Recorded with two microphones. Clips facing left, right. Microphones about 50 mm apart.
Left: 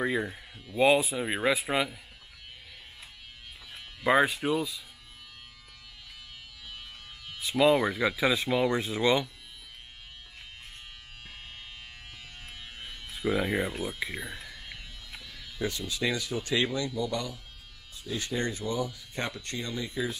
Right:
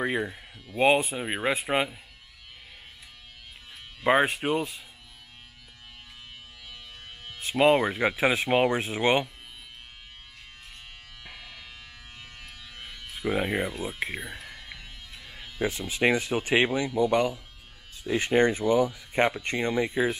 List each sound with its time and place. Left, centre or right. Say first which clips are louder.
0.0 s speech: right 1 dB; centre
0.7 s a man's voice: right 1 dB; right
1.1 s speech: even; centre
1.5 s a man's voice: right 3 dB; right
4.0 s speech: right 1 dB; right
4.4 s speech: right 1 dB; right
7.2 s music: right 1 dB; right
7.9 s speech: right 2 dB; right
11.2 s electric shaver: right 2 dB; right
12.7 s music: right 3 dB; right
13.8 s a sound: right 2 dB; right
15.2 s music: right 4 dB; right
16.1 s speech: right 7 dB; right